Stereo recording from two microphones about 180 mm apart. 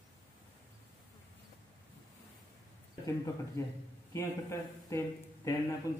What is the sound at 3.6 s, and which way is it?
A man's voice, 15° left (ahead or behind).